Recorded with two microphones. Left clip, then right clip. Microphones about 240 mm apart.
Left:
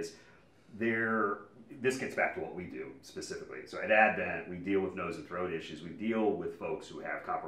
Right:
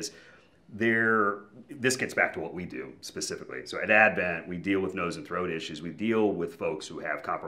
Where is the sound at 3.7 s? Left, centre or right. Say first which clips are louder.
Right 5 dB; right.